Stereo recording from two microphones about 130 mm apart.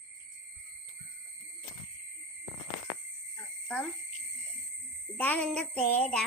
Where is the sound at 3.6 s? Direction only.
5° left (ahead or behind).